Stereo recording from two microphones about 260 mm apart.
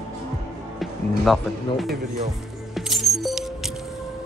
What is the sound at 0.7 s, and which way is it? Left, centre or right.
Music, centre.